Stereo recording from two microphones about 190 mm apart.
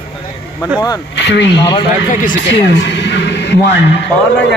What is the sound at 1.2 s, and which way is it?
Speech, 65° left (ahead or behind).